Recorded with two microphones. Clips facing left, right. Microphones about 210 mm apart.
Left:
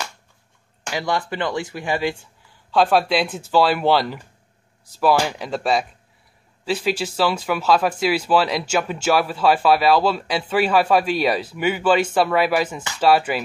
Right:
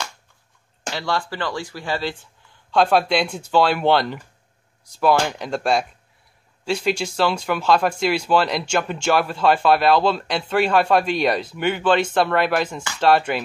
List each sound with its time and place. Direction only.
0.9 s speech: 15° left (ahead or behind)
2.7 s speech: centre (ahead or behind)